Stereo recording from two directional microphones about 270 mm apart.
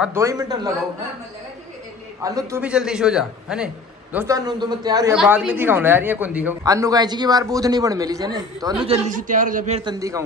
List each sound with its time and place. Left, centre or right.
0.0 s speech: centre
2.2 s speech: centre
5.1 s speech: centre
8.8 s a man's voice: right